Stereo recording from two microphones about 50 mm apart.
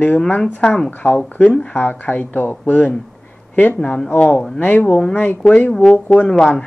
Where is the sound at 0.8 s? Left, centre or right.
Left.